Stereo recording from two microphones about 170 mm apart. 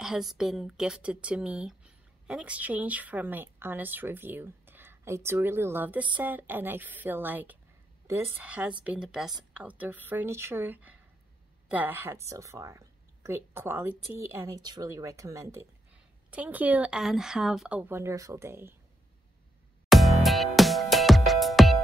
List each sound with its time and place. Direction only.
0.0 s speech: centre (ahead or behind)
19.9 s music: centre (ahead or behind)